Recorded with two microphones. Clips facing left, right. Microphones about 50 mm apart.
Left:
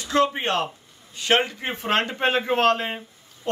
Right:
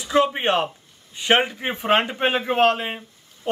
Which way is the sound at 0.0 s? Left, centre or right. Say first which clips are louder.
Right 2 dB; centre.